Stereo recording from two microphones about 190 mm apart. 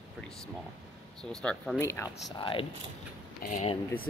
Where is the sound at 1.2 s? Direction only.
5° left (ahead or behind).